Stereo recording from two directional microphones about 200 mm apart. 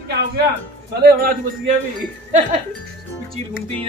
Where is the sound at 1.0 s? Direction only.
50° right (ahead or behind).